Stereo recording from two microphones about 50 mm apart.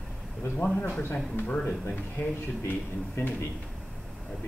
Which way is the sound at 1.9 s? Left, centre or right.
Left.